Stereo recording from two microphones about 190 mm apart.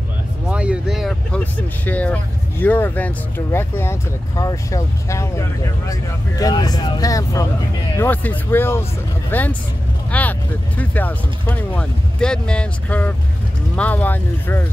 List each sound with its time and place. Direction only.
0.5 s vehicle: 5° right (ahead or behind)
2.6 s speech: 10° left (ahead or behind)